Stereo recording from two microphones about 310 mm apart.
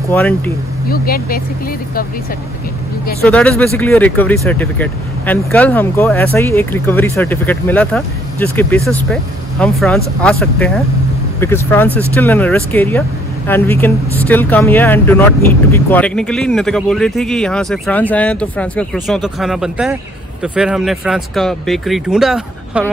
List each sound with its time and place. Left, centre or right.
0.1 s speech: centre
0.8 s speech: left
3.3 s speech: centre